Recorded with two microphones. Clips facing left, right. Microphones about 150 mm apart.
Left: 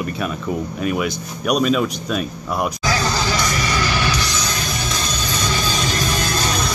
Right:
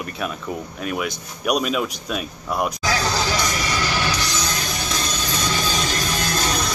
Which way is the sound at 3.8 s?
75° left (ahead or behind).